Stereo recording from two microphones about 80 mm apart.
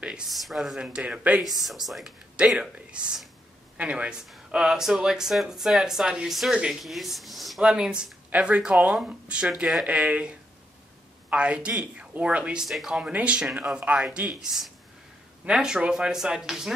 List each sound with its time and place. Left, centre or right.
0.3 s speech: centre
0.7 s speech: centre
1.4 s speech: centre